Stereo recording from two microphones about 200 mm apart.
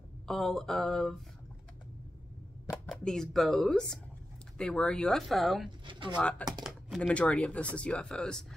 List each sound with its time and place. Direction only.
0.3 s speech: centre (ahead or behind)
2.7 s speech: centre (ahead or behind)
5.9 s speech: 25° right (ahead or behind)
6.1 s speech: 5° left (ahead or behind)